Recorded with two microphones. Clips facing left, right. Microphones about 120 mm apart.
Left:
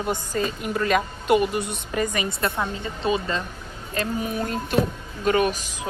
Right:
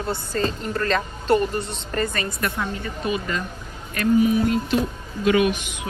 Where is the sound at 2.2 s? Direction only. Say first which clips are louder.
Left 1 dB; 25° left (ahead or behind).